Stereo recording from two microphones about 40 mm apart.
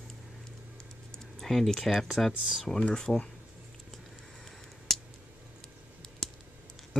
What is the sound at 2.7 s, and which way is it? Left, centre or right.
Speech, left.